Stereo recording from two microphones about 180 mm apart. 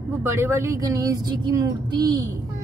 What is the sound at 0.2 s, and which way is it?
Speech, 15° right (ahead or behind).